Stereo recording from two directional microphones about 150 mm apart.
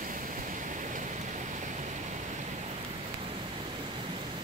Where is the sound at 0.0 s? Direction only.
65° right (ahead or behind).